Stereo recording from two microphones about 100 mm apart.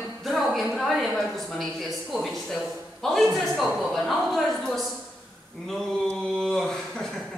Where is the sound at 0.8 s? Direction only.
Centre (ahead or behind).